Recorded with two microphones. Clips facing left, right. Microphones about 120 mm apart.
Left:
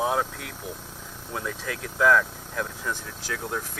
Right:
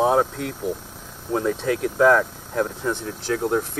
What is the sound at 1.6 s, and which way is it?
Speech, 30° right (ahead or behind).